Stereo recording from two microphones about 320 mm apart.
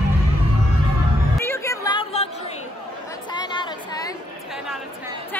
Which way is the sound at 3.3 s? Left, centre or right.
Centre.